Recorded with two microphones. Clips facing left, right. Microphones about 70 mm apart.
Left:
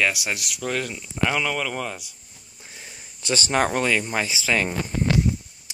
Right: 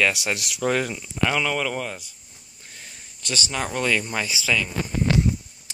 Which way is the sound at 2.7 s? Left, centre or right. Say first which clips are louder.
Left 1 dB; centre.